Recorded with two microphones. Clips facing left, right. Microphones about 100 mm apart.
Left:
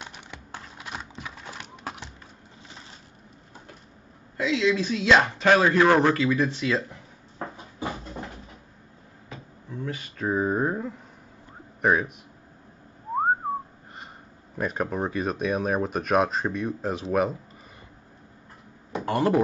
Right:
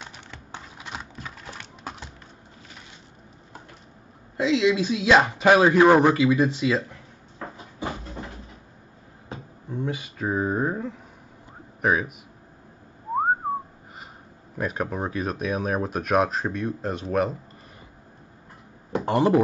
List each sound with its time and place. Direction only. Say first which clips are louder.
0.6 s clip-clop: right 1 dB; centre (ahead or behind)
4.4 s speech: right 3 dB; 20° right (ahead or behind)
9.3 s a sound: right 5 dB; 30° right (ahead or behind)
9.8 s speech: even; 15° right (ahead or behind)
14.6 s speech: even; centre (ahead or behind)
19.0 s speech: right 2 dB; 20° right (ahead or behind)